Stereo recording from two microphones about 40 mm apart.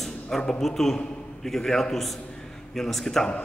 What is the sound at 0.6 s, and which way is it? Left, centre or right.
A man's voice, centre.